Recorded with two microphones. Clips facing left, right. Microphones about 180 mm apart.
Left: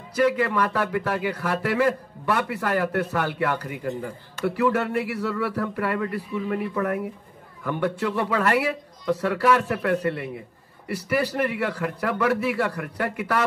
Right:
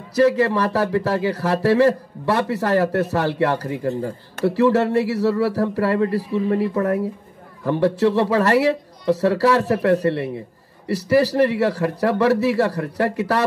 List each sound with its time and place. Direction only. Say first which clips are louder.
0.2 s speech: right 5 dB; 35° right (ahead or behind)